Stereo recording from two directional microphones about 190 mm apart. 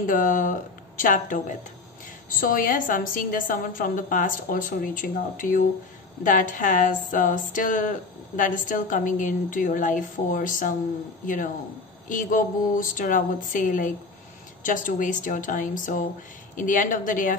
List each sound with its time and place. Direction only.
0.0 s speech: 45° left (ahead or behind)